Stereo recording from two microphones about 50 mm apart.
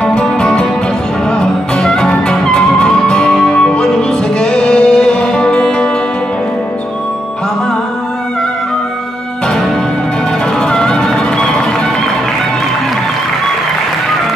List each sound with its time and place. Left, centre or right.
0.0 s music: centre
10.6 s music: centre